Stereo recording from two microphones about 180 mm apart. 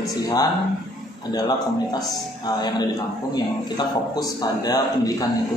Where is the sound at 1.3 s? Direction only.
20° left (ahead or behind).